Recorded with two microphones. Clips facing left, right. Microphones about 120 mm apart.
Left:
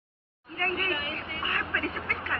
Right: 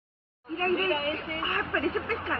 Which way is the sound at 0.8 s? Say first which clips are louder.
Right 5 dB; 35° right (ahead or behind).